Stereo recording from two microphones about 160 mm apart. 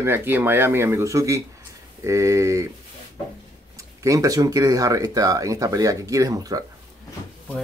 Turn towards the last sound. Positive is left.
turn(degrees=-20)  # may be behind; listen again after turning